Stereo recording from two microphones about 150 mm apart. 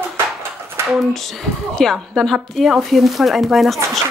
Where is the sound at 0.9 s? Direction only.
Centre (ahead or behind).